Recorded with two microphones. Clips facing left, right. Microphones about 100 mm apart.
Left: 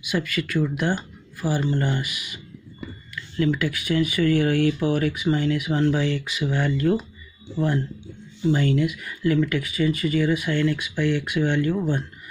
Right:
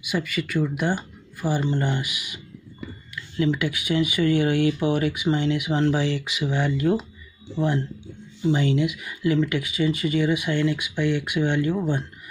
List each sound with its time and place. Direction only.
0.1 s speech: 10° right (ahead or behind)